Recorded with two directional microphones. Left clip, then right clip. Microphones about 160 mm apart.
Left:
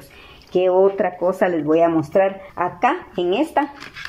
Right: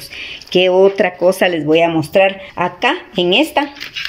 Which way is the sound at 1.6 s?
5° right (ahead or behind).